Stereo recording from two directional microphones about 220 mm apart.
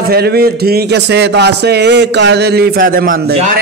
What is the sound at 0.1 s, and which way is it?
Speech, 45° right (ahead or behind).